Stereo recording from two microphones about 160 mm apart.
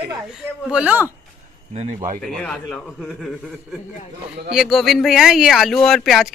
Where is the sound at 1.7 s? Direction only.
45° right (ahead or behind).